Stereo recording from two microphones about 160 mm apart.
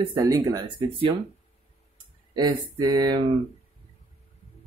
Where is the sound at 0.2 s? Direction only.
20° right (ahead or behind).